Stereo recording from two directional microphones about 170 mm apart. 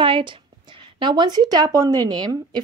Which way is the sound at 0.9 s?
25° right (ahead or behind).